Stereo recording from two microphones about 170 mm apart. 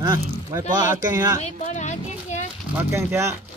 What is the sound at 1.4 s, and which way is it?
Speech, 45° left (ahead or behind).